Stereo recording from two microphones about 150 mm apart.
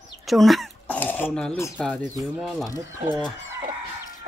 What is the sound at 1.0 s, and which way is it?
Speech, 10° left (ahead or behind).